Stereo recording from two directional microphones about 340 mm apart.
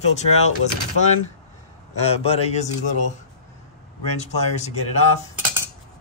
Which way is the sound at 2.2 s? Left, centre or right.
Centre.